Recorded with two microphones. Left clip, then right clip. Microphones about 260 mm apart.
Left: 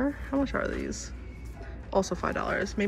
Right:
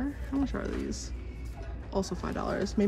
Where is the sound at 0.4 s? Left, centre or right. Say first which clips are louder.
Left 4 dB; centre.